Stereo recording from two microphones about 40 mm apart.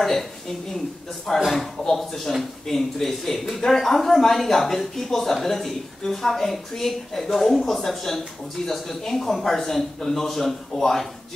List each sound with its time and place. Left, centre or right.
1.5 s speech: centre